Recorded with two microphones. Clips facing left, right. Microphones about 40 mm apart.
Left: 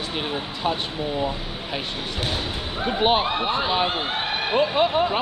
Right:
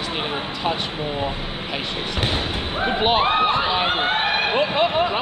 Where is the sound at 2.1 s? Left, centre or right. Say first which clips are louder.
Right 4 dB; right.